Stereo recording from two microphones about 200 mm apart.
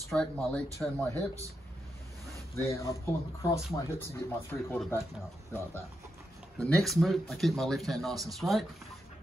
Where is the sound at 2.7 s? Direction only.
15° left (ahead or behind).